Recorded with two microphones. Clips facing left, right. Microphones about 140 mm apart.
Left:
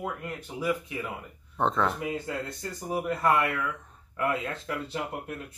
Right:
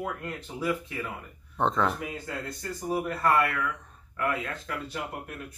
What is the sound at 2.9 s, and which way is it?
Speech, 20° left (ahead or behind).